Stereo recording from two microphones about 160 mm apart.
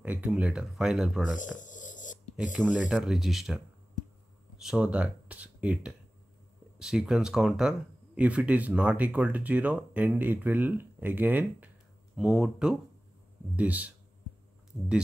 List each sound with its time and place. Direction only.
0.0 s speech: 10° right (ahead or behind)
1.3 s a sound: 50° left (ahead or behind)
2.5 s speech: 5° right (ahead or behind)